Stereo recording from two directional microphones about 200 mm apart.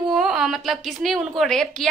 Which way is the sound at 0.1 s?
Centre (ahead or behind).